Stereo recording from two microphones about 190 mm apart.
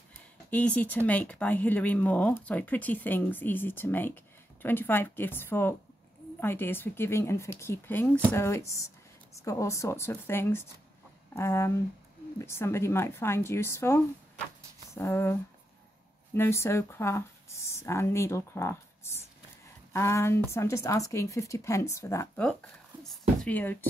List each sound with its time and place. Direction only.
0.5 s speech: 10° left (ahead or behind)
16.3 s speech: 15° left (ahead or behind)
23.0 s a sound: 5° left (ahead or behind)